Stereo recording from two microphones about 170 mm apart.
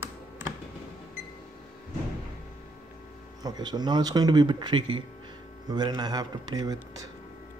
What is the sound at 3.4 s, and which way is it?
A man's voice, 25° right (ahead or behind).